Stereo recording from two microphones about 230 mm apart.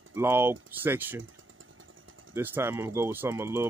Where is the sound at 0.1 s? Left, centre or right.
Centre.